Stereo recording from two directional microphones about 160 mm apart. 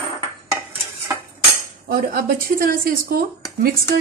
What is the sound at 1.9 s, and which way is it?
A woman's voice, 65° right (ahead or behind).